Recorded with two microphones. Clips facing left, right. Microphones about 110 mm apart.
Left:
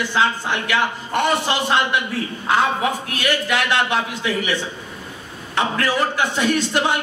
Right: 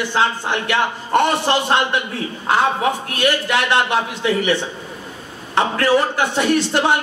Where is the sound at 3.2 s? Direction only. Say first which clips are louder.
Right 3 dB; 40° right (ahead or behind).